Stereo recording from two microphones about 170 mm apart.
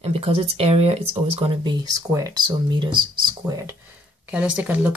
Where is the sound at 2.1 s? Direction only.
20° right (ahead or behind).